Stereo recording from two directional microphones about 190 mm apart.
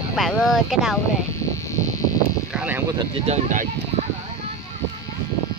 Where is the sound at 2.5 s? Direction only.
5° right (ahead or behind).